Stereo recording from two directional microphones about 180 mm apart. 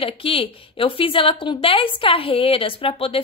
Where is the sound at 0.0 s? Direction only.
30° left (ahead or behind).